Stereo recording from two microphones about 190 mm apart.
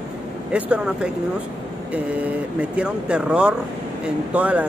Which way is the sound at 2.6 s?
5° right (ahead or behind).